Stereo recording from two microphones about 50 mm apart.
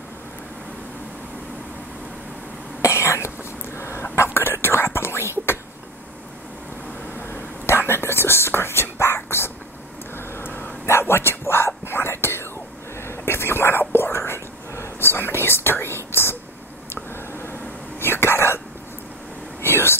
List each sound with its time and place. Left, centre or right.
2.8 s cough: left
3.7 s whispering: left
7.2 s whispering: left
10.1 s vehicle: left
10.9 s whispering: left
19.6 s whispering: left